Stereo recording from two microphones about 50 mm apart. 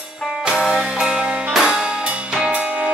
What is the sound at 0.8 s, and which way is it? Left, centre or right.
Music, centre.